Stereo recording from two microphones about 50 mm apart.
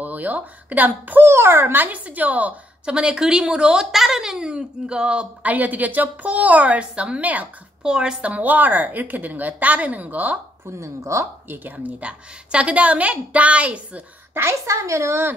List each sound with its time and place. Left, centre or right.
0.0 s speech: right
1.2 s a child's voice: right
1.9 s a woman's voice: right
2.8 s speech: right
7.8 s a woman's voice: centre
8.2 s a woman's voice: right
10.8 s speech: right
11.4 s speech: right
14.3 s speech: right